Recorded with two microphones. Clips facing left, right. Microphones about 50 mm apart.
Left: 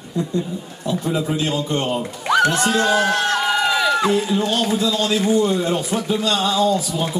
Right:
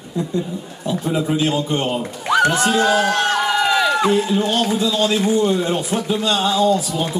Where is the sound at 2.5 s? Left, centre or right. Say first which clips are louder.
Right 2 dB; centre.